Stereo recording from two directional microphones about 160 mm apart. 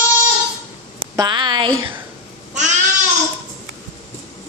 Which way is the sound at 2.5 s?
50° right (ahead or behind).